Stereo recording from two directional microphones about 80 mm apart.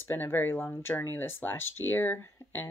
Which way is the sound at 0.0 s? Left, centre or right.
Left.